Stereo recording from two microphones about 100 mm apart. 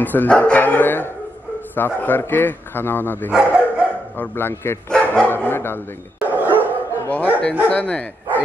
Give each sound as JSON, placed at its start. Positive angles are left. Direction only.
{"t": 0.0, "sound": "a man's voice", "side_deg": 20}
{"t": 3.3, "sound": "dog", "side_deg": -10}
{"t": 4.2, "sound": "a man's voice", "side_deg": 20}
{"t": 4.8, "sound": "speech", "side_deg": 10}
{"t": 6.2, "sound": "dog", "side_deg": -20}
{"t": 7.1, "sound": "speech", "side_deg": 15}